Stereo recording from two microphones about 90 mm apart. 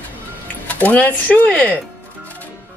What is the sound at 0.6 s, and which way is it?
Speech, 15° left (ahead or behind).